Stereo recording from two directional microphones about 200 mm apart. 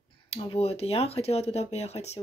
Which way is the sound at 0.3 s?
30° left (ahead or behind).